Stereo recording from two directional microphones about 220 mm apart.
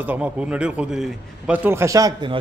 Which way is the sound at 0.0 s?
5° right (ahead or behind).